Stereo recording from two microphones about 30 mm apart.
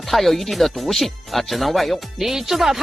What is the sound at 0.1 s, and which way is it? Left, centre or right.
Speech, centre.